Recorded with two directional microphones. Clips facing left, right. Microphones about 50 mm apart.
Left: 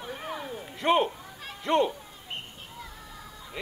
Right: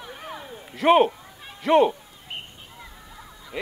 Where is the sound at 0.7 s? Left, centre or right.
Right.